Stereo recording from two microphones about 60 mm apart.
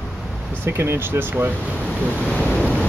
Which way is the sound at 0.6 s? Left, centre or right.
Right.